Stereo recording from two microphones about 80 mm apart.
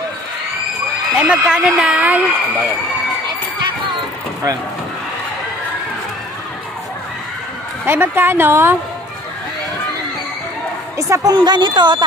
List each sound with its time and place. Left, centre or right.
1.1 s speech: centre
7.8 s a woman's voice: right
11.0 s a woman's voice: right
11.3 s a woman's voice: right